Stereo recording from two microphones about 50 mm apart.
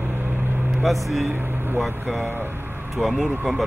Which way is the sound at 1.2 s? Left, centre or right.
Right.